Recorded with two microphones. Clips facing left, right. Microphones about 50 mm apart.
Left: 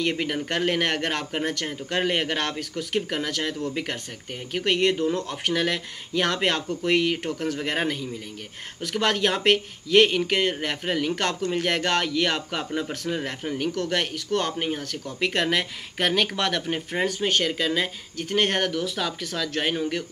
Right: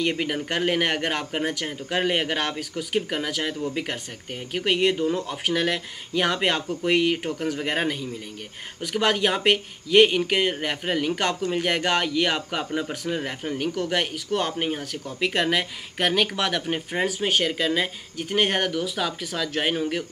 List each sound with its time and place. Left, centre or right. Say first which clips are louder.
0.0 s speech: right 1 dB; centre